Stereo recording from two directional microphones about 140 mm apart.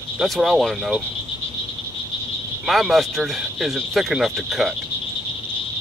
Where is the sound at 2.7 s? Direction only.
Centre (ahead or behind).